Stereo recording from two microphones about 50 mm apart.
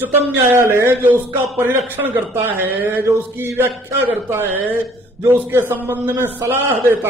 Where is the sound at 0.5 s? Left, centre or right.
Right.